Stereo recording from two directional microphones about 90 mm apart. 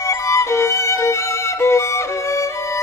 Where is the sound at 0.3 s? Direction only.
35° left (ahead or behind).